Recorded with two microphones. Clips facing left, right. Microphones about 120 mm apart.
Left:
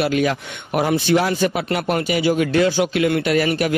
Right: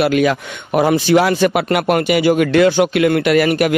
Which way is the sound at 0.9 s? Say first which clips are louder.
Right 4 dB; 90° right.